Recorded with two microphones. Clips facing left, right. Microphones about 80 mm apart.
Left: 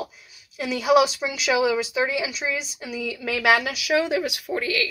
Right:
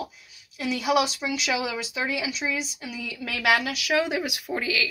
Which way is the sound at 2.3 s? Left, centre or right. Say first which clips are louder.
Left 1 dB; left.